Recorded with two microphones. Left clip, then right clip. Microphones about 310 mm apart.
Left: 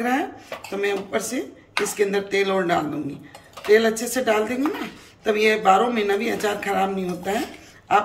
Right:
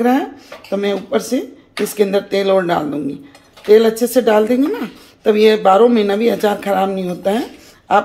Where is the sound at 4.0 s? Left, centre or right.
Centre.